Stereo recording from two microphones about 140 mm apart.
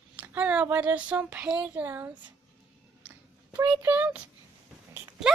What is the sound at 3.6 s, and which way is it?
Speech, 15° right (ahead or behind).